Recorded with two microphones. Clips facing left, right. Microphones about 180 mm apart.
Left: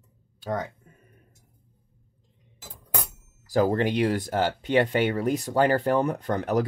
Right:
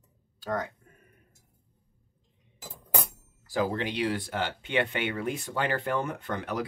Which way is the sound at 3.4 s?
45° left (ahead or behind).